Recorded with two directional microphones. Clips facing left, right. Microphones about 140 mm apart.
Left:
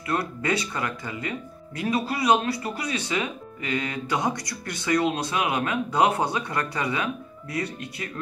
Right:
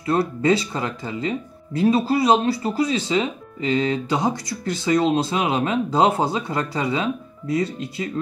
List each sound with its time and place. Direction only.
0.0 s speech: 25° right (ahead or behind)